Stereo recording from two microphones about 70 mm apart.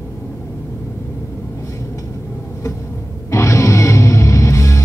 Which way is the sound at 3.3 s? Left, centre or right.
Left.